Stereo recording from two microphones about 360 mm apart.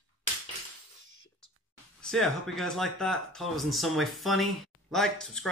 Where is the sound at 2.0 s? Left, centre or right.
Centre.